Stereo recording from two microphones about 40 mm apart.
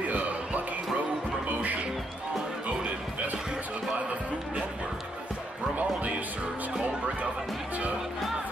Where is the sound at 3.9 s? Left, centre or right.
Right.